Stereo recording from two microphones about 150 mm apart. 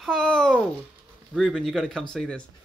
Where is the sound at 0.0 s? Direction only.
5° left (ahead or behind).